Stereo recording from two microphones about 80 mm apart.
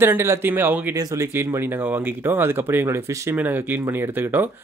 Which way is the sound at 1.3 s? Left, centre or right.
Right.